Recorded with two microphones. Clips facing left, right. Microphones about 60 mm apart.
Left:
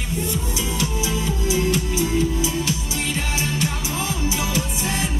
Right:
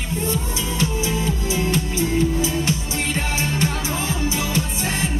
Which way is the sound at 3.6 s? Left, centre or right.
Right.